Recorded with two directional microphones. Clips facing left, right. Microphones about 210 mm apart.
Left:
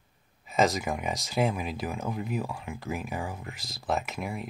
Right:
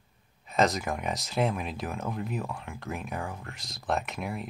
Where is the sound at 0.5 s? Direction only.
Centre (ahead or behind).